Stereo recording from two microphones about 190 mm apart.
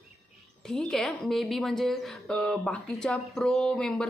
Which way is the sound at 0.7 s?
Centre (ahead or behind).